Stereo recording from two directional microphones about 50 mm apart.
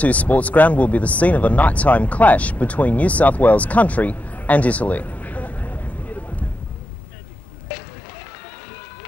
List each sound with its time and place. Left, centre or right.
0.0 s speech: left